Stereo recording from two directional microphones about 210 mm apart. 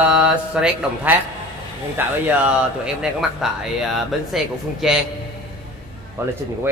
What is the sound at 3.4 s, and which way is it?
Speech, centre (ahead or behind).